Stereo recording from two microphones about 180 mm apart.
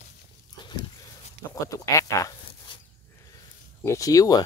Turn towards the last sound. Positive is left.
turn(degrees=20)  # may be behind; listen again after turning